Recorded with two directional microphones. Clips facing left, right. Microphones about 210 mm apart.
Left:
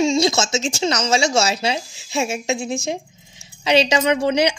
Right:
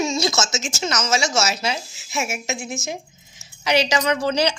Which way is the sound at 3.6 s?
25° left (ahead or behind).